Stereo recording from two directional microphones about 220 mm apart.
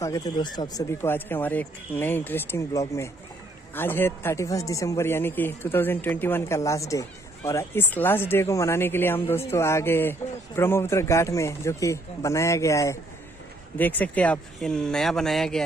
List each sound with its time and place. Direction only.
0.0 s speech: 15° left (ahead or behind)